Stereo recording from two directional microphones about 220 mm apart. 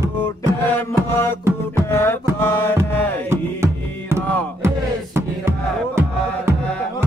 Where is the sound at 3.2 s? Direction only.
10° right (ahead or behind).